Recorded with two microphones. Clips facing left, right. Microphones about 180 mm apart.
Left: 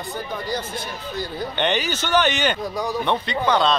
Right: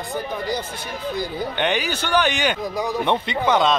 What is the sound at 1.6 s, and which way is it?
A man's voice, 10° right (ahead or behind).